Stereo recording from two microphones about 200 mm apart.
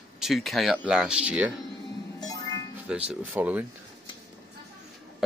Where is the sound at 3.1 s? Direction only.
10° right (ahead or behind).